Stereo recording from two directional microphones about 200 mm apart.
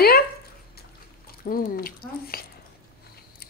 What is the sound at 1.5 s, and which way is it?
Speech, 45° left (ahead or behind).